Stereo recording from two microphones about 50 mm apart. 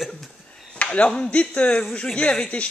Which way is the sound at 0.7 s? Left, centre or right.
Left.